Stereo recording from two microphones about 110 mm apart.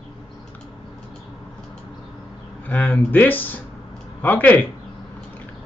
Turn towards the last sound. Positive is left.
turn(degrees=15)  # may be behind; listen again after turning